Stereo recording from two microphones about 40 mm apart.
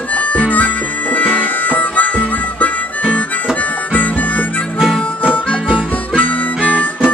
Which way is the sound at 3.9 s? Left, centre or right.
Left.